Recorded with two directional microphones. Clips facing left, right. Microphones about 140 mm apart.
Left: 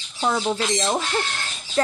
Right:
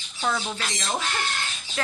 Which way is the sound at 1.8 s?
35° left (ahead or behind).